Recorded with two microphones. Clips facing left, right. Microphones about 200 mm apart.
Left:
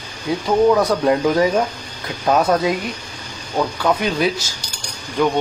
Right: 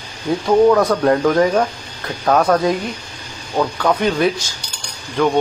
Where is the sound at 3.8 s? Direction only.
5° left (ahead or behind).